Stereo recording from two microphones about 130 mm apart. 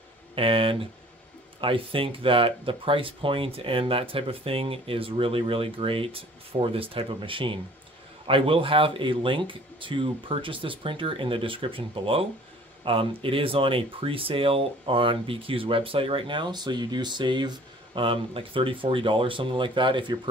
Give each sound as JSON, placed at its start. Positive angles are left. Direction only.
{"t": 0.4, "sound": "speech", "side_deg": -45}